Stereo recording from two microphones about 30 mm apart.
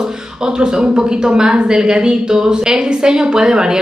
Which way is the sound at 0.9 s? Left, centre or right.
Right.